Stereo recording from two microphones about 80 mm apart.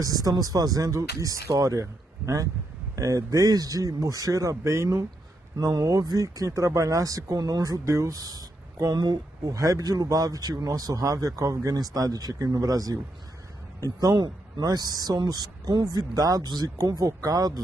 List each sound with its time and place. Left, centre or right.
0.0 s speech: right
9.5 s speech: right